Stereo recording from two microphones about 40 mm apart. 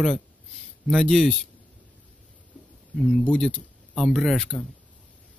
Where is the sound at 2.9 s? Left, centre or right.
Centre.